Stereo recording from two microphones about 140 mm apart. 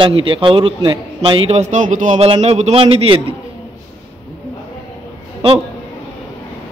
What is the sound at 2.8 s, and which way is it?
Speech, 40° right (ahead or behind).